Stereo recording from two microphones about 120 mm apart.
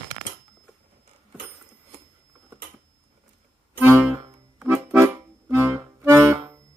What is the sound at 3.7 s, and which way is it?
Music, 20° right (ahead or behind).